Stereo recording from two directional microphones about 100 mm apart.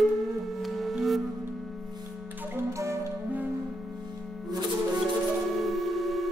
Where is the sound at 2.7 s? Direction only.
30° right (ahead or behind).